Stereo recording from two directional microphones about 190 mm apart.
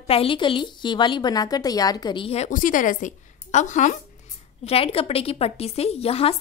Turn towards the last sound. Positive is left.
turn(degrees=30)  # may be behind; listen again after turning